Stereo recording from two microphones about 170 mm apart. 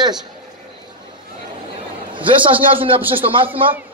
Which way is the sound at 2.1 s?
30° right (ahead or behind).